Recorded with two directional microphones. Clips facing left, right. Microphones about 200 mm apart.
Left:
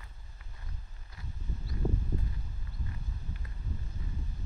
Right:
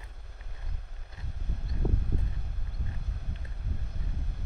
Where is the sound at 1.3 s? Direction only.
70° right (ahead or behind).